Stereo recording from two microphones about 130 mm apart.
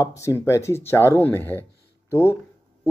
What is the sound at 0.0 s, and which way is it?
Speech, 25° left (ahead or behind).